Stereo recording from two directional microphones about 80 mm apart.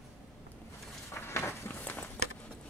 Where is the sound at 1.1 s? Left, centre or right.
Left.